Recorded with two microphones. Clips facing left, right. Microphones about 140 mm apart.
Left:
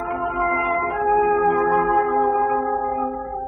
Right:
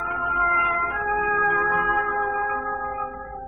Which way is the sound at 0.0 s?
40° left (ahead or behind).